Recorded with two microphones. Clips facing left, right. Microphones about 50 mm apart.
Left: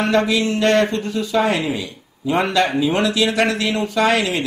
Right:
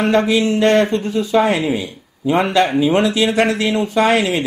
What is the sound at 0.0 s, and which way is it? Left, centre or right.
Speech, right.